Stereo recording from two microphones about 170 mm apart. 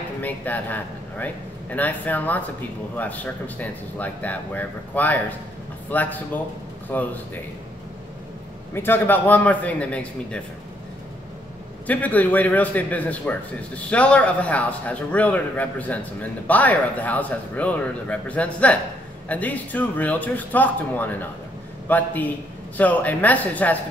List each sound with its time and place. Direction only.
0.2 s a man's voice: 10° left (ahead or behind)
8.7 s a man's voice: 10° left (ahead or behind)
11.9 s a man's voice: 10° left (ahead or behind)